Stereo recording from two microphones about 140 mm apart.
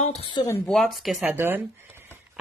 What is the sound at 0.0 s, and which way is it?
Speech, 45° left (ahead or behind).